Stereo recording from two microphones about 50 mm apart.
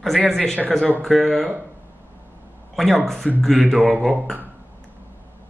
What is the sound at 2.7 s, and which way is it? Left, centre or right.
Speech, centre.